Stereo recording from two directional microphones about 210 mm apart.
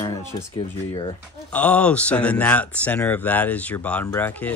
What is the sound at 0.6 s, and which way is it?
Speech, 25° left (ahead or behind).